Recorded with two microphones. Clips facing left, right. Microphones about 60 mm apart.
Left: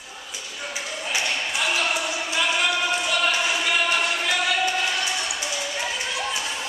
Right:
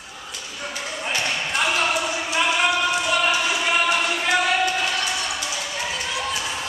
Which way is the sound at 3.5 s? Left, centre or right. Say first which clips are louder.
Right 2 dB; centre.